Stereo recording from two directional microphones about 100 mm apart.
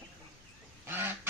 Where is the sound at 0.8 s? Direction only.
20° right (ahead or behind).